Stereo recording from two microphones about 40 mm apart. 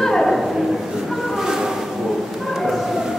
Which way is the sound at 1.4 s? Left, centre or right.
Centre.